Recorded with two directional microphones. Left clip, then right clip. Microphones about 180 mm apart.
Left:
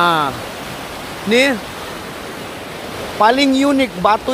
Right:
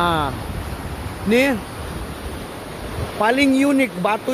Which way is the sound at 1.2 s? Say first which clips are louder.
Left 4 dB; 15° right (ahead or behind).